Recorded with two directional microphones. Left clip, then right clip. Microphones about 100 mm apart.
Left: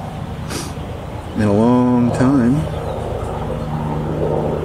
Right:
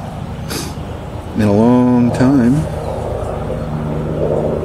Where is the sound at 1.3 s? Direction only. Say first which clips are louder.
Right 3 dB; 15° right (ahead or behind).